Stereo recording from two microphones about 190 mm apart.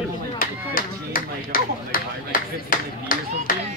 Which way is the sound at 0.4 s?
45° left (ahead or behind).